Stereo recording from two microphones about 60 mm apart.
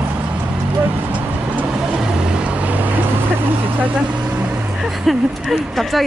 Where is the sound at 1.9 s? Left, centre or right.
Centre.